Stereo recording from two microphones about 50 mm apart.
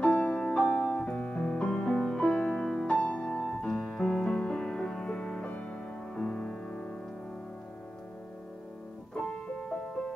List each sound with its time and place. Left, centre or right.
0.0 s music: left
0.7 s music: left
1.9 s music: centre
2.2 s music: centre
2.5 s music: centre
2.9 s music: left
3.4 s music: centre
4.0 s music: centre
6.1 s music: centre
9.1 s music: centre